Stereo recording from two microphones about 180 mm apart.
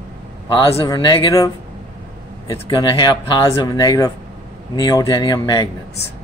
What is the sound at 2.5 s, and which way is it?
Speech, 20° left (ahead or behind).